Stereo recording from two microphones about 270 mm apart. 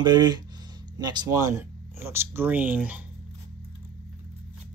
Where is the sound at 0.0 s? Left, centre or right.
Centre.